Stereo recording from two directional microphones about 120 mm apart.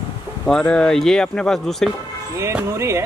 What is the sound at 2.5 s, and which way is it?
Speech, 20° right (ahead or behind).